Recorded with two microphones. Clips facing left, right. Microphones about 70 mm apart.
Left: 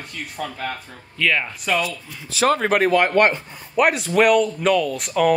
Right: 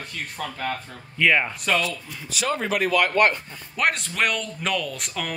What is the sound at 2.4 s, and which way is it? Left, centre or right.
Speech, left.